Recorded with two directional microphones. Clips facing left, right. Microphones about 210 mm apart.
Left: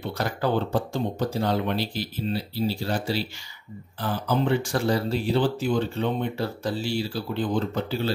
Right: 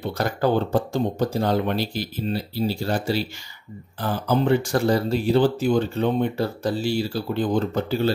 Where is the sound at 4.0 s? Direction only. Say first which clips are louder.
Right 3 dB; 45° right (ahead or behind).